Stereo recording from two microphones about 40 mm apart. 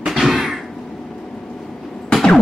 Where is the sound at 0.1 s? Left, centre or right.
Centre.